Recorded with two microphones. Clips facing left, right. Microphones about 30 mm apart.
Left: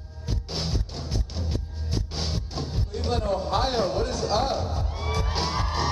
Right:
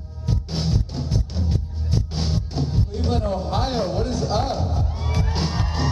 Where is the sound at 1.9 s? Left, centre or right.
Centre.